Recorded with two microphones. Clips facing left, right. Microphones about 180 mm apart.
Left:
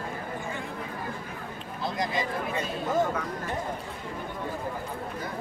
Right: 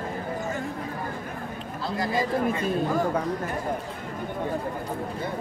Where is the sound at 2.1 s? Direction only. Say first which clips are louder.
Right 6 dB; 40° right (ahead or behind).